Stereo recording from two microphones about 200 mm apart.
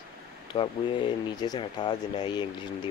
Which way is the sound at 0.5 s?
25° left (ahead or behind).